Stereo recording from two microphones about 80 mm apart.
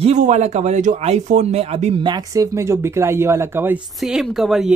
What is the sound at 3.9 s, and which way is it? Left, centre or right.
Speech, centre.